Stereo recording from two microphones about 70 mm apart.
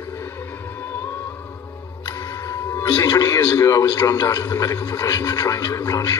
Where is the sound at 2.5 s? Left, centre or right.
Left.